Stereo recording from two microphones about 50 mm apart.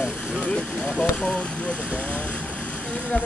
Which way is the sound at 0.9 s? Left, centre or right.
Left.